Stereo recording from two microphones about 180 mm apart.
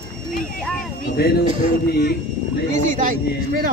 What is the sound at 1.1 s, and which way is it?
Speech, 60° left (ahead or behind).